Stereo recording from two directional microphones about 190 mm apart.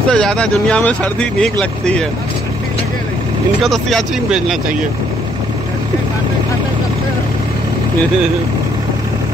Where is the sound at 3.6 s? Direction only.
Centre (ahead or behind).